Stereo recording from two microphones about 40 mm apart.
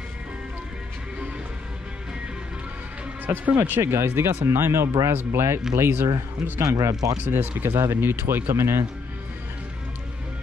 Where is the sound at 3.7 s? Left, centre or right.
Right.